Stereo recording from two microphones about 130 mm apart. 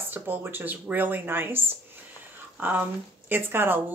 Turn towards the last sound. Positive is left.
turn(degrees=-15)  # may be behind; listen again after turning